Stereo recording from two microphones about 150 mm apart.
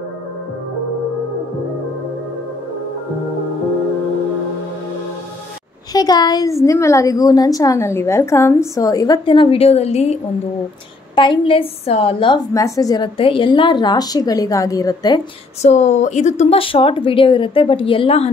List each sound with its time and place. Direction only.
5.9 s a woman's voice: 25° left (ahead or behind); by 10.1 s 45° left (ahead or behind)
11.1 s a woman's voice: 35° left (ahead or behind)
12.5 s a woman's voice: 20° left (ahead or behind)
15.6 s a woman's voice: 50° left (ahead or behind)